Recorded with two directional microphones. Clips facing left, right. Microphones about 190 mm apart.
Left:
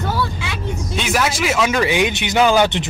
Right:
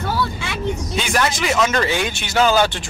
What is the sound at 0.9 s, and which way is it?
Speech, 5° left (ahead or behind).